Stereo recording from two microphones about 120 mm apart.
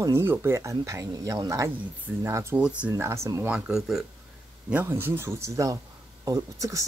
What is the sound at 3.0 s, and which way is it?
Speech, 25° right (ahead or behind).